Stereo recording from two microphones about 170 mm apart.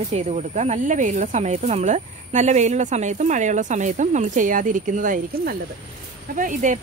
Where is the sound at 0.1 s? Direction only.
45° right (ahead or behind).